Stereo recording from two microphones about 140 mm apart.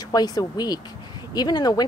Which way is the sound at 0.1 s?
25° left (ahead or behind).